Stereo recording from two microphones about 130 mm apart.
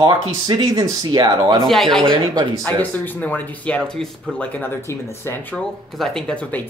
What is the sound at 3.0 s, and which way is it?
Speech, 10° left (ahead or behind).